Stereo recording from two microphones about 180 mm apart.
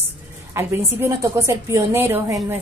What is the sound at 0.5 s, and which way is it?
A woman's voice, 15° right (ahead or behind).